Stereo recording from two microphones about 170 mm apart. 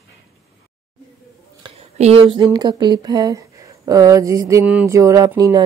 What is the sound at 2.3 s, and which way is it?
Speech, 25° right (ahead or behind).